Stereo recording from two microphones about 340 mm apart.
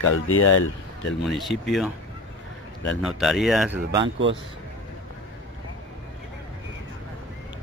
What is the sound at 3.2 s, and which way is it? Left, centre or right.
Speech, centre.